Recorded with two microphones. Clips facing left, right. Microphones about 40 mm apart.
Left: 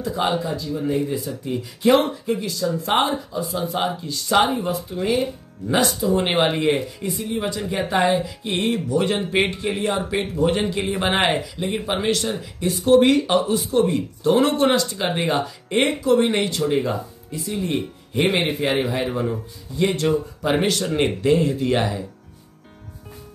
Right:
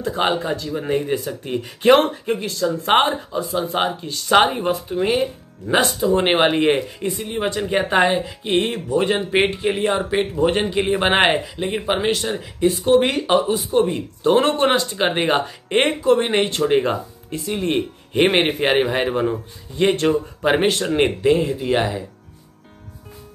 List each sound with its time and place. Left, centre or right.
0.0 s a man's voice: right
14.2 s speech: right
20.5 s a man's voice: right